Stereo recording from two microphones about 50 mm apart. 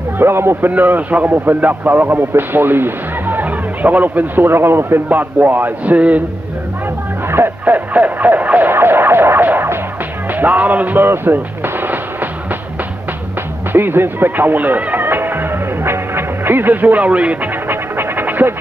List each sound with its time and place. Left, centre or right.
0.2 s a man's voice: right
0.7 s a man's voice: right
4.5 s a man's voice: right
5.1 s speech: right
5.9 s speech: right
7.2 s music: right
7.6 s speech: right
8.7 s a sound: right
9.5 s music: right
10.3 s speech: right
11.1 s artillery fire: right
13.7 s music: right
17.6 s music: right